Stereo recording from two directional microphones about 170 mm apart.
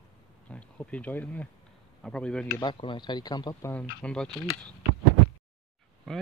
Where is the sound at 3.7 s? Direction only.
5° left (ahead or behind).